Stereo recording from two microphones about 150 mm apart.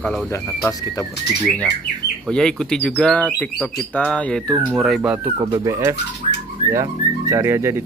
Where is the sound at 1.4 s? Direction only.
10° left (ahead or behind).